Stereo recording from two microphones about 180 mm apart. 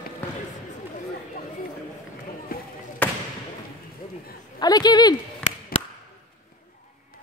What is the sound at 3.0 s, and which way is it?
Basketball bounce, 10° left (ahead or behind).